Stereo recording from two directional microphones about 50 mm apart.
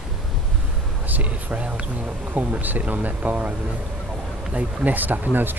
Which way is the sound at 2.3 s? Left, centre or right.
Right.